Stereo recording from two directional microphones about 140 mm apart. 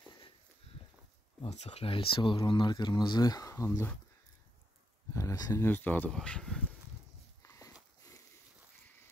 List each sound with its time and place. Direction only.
1.4 s speech: 50° left (ahead or behind); by 3.9 s 20° left (ahead or behind)
5.1 s speech: 25° left (ahead or behind); by 6.6 s 5° left (ahead or behind)
7.4 s a sound: 25° left (ahead or behind)